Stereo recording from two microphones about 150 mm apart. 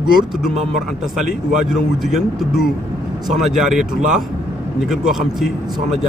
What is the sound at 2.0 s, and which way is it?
Speech, centre (ahead or behind).